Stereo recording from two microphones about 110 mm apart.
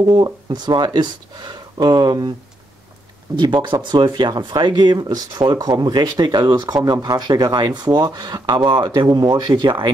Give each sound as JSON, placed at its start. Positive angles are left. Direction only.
{"t": 0.1, "sound": "speech", "side_deg": -40}
{"t": 3.3, "sound": "speech", "side_deg": -40}